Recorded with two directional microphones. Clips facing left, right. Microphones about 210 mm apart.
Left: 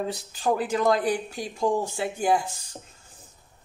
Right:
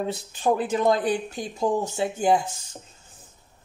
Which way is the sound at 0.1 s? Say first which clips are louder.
Right 2 dB; 25° right (ahead or behind).